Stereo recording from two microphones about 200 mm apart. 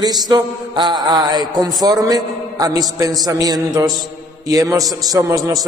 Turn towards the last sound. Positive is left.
turn(degrees=-15)  # may be behind; listen again after turning